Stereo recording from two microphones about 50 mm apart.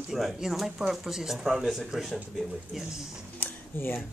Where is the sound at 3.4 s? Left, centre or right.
Left.